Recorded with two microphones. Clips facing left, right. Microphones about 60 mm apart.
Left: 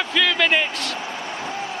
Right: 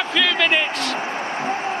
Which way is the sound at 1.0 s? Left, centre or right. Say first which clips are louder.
Right 5 dB; right.